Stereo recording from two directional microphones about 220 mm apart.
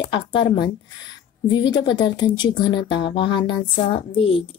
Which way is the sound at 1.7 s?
20° left (ahead or behind).